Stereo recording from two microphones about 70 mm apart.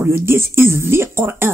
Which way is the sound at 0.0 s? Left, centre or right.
Right.